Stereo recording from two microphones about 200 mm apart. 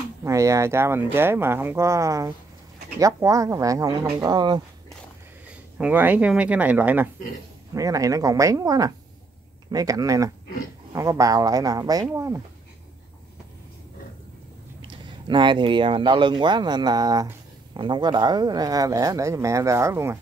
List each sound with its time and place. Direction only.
0.2 s speech: 15° right (ahead or behind)
5.5 s speech: 5° right (ahead or behind)
14.8 s speech: 25° right (ahead or behind)